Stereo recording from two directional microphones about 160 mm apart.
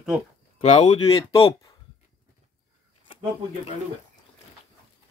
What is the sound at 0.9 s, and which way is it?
Speech, 35° left (ahead or behind).